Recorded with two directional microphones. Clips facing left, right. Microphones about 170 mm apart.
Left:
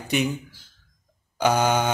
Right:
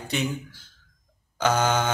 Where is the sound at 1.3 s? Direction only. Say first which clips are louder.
Left 2 dB; 15° left (ahead or behind).